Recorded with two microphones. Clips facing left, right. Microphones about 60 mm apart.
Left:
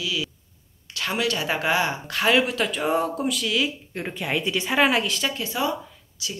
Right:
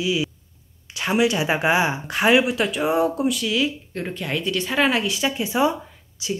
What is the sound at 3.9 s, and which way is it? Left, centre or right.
Speech, centre.